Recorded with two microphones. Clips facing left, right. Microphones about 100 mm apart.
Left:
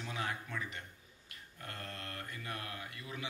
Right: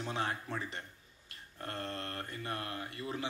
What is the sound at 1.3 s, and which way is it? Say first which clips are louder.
Mantra: right 6 dB; 35° right (ahead or behind).